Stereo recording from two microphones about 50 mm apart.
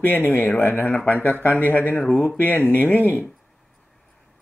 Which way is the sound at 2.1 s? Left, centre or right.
Centre.